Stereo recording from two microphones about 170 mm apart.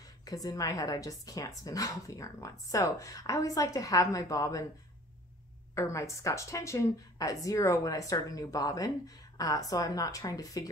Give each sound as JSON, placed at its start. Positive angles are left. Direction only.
{"t": 0.2, "sound": "a woman's voice", "side_deg": 20}
{"t": 5.8, "sound": "a woman's voice", "side_deg": 15}